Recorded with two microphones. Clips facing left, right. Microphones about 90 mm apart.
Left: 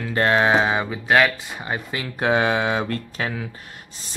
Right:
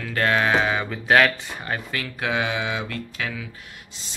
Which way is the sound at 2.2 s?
40° left (ahead or behind).